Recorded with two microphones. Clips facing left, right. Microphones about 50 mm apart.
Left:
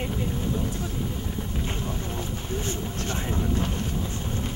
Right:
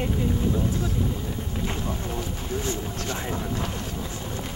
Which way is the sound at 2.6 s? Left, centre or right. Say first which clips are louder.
Right 2 dB; left.